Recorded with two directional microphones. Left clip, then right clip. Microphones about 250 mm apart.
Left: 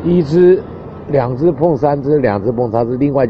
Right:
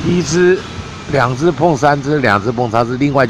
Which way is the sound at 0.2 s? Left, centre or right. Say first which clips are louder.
Left 2 dB; centre.